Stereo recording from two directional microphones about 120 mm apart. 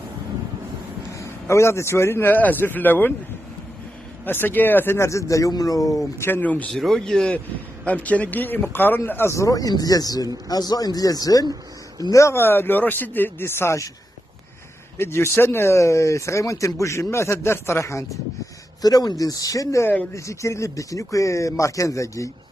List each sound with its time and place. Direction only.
1.1 s a man's voice: 25° left (ahead or behind)
4.3 s a man's voice: 15° left (ahead or behind)
15.0 s speech: 20° left (ahead or behind)